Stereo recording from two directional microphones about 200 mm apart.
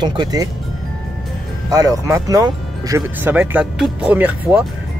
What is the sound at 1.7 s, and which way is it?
Speech, 15° right (ahead or behind).